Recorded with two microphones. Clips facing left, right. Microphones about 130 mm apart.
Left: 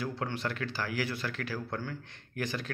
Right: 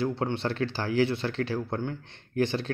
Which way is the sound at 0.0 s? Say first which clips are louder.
Right 6 dB; 25° right (ahead or behind).